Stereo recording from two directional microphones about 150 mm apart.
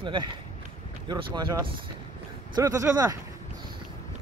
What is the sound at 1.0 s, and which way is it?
Speech, 30° right (ahead or behind).